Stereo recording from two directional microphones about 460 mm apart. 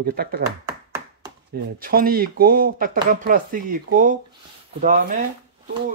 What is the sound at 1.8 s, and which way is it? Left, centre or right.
Speech, centre.